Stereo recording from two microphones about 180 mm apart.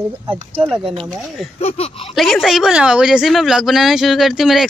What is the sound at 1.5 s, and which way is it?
Speech, 35° left (ahead or behind).